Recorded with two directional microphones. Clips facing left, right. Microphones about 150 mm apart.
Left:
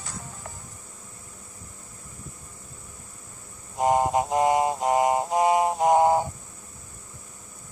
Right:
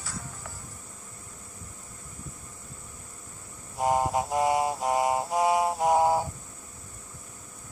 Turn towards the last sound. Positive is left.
turn(degrees=20)  # may be behind; listen again after turning